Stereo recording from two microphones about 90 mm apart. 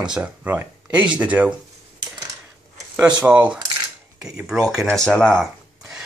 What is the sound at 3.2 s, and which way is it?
Speech, 15° right (ahead or behind).